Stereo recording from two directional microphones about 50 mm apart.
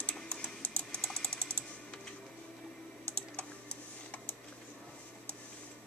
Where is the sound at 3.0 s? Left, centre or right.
Left.